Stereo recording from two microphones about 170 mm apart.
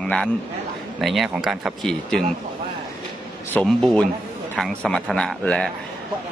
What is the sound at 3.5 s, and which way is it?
A man's voice, 5° left (ahead or behind).